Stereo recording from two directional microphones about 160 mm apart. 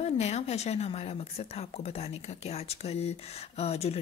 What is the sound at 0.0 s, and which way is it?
Speech, 40° left (ahead or behind).